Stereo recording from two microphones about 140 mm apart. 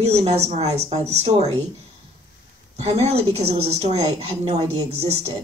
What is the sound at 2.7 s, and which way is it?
A woman's voice, 50° right (ahead or behind).